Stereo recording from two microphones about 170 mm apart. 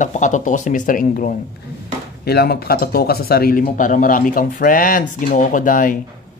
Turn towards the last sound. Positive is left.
turn(degrees=50)  # may be behind; listen again after turning